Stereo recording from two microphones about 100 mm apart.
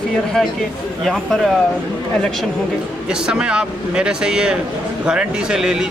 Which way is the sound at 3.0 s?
10° right (ahead or behind).